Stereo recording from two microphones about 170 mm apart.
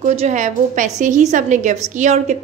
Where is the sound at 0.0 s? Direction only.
40° right (ahead or behind).